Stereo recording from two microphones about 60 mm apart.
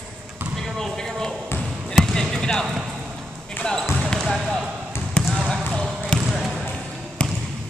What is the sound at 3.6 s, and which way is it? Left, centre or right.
Basketball bounce, centre.